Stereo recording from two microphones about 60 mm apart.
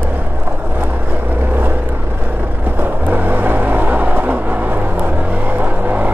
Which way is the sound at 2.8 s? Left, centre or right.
Right.